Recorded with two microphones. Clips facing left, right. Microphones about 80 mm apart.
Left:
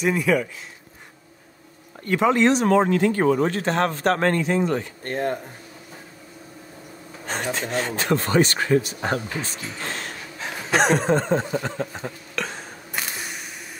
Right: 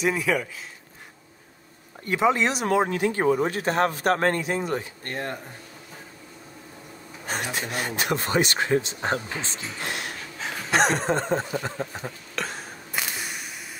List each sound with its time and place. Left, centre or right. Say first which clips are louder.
0.0 s speech: left 3 dB; centre
2.0 s speech: left 4 dB; centre
5.1 s speech: left 7 dB; centre
7.2 s speech: left 3 dB; centre; by 9.6 s right
9.8 s a sound: even; centre
10.7 s a sound: left 3 dB; centre